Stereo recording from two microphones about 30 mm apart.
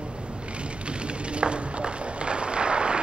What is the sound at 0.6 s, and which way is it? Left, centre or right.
Run, right.